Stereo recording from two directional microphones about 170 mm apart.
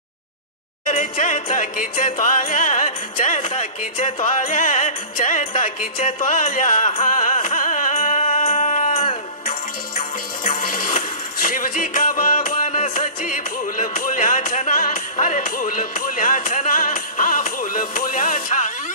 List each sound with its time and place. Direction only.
0.8 s music: 50° left (ahead or behind)
5.9 s music: 35° left (ahead or behind)
6.2 s music: 50° left (ahead or behind)